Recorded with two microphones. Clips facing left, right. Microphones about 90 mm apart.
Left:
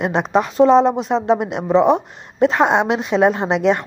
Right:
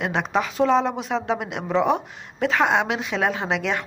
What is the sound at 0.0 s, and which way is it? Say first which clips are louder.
A woman's voice: left 6 dB; 30° left (ahead or behind).